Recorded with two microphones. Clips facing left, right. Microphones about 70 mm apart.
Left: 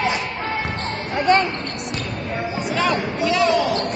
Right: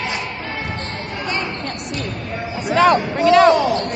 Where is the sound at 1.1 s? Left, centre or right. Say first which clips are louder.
Left 9 dB; left.